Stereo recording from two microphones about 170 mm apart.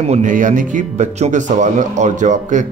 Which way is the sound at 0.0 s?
45° right (ahead or behind).